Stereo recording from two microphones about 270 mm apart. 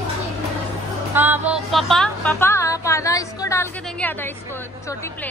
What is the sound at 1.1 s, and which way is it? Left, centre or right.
Music, centre.